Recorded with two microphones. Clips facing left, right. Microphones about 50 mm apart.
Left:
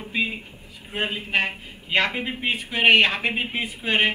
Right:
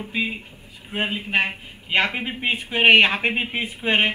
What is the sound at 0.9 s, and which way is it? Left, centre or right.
A man's voice, centre.